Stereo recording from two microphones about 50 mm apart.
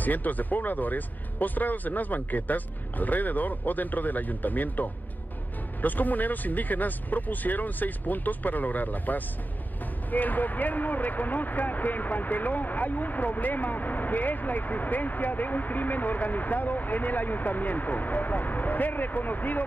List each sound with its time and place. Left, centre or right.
0.0 s speech: left